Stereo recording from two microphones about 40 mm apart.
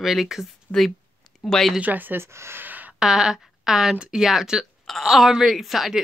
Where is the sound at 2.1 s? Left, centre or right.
Right.